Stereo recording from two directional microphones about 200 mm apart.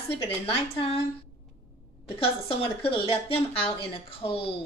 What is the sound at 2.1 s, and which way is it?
Speech, 30° left (ahead or behind).